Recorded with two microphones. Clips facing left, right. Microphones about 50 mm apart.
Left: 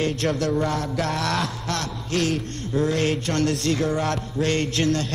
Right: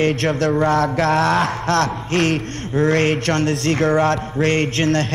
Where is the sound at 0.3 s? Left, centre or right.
Right.